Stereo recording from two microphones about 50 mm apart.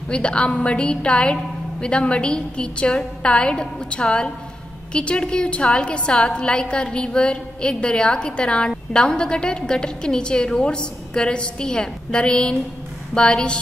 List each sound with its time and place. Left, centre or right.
0.1 s a woman's voice: left